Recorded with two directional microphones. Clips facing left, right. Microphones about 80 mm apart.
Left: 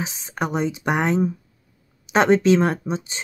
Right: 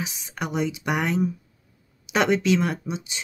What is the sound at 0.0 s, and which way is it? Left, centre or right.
Speech, left.